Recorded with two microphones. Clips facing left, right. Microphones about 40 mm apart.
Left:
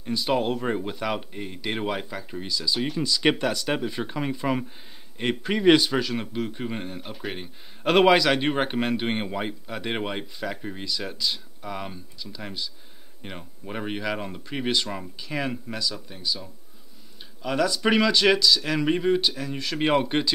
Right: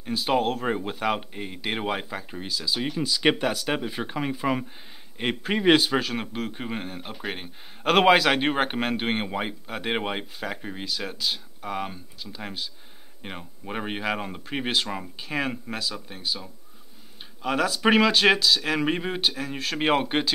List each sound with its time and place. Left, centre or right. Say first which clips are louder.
0.0 s speech: right 1 dB; centre
8.3 s speech: even; centre